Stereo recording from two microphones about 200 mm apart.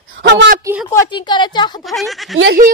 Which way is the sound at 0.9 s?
20° left (ahead or behind).